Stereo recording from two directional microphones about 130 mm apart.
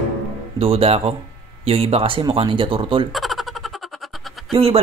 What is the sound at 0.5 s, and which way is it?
Speech, 45° right (ahead or behind).